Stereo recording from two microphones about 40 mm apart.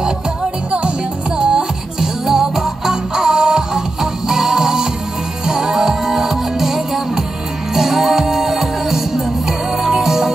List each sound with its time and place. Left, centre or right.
1.4 s music: centre